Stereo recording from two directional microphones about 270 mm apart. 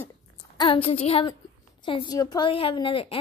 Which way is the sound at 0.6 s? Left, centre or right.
Centre.